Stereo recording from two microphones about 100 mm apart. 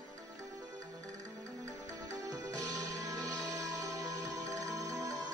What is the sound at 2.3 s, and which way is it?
Music, 40° right (ahead or behind).